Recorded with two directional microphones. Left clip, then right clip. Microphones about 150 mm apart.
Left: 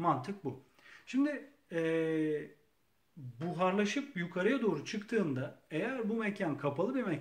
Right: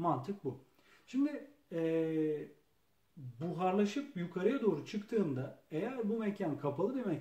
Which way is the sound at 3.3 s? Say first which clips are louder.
Left 2 dB; 20° left (ahead or behind).